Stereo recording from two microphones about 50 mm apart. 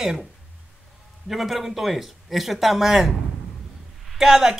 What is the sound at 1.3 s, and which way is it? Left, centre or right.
Speech, centre.